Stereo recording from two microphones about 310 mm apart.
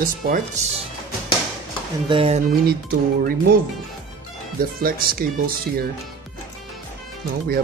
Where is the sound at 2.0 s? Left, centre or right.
Centre.